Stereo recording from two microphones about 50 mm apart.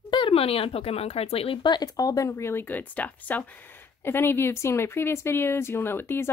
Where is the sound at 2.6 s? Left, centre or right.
Left.